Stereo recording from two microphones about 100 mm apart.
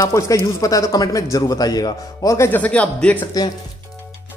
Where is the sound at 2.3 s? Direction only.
25° left (ahead or behind).